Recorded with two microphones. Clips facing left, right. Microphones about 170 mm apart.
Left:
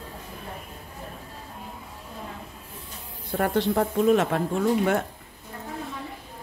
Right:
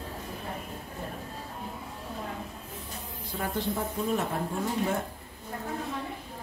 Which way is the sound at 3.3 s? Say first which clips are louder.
Left 8 dB; 65° left (ahead or behind).